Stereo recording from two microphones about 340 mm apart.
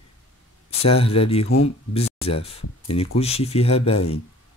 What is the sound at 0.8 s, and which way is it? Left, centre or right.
Speech, centre.